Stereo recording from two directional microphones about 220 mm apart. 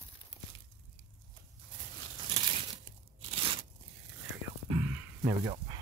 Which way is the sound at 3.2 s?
25° right (ahead or behind).